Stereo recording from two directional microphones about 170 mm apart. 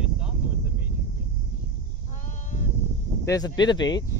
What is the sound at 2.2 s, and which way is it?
Sheep, 50° left (ahead or behind).